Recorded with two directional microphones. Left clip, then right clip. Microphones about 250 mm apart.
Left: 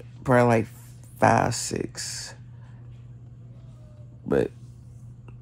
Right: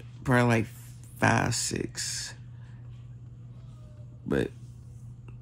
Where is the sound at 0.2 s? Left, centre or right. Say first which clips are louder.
Left 5 dB; centre.